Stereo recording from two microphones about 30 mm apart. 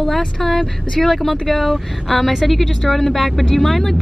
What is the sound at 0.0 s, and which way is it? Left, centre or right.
A woman's voice, centre.